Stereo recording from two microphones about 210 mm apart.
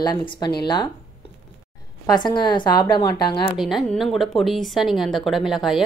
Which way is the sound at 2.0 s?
20° left (ahead or behind).